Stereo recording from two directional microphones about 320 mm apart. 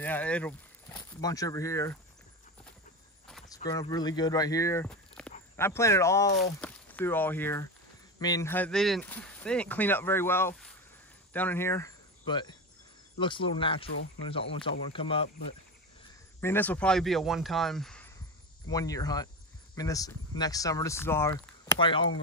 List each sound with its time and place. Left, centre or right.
0.0 s speech: centre
3.3 s speech: centre
16.3 s speech: centre